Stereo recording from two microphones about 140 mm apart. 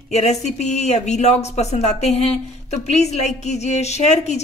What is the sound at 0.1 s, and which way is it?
A woman's voice, 50° left (ahead or behind).